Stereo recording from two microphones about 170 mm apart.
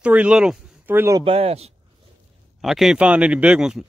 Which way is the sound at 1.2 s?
35° right (ahead or behind).